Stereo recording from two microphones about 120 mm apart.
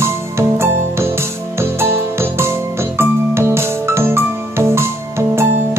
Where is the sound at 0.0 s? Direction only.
20° right (ahead or behind).